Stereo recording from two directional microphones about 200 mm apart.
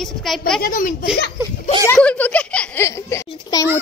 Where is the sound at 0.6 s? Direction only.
40° left (ahead or behind).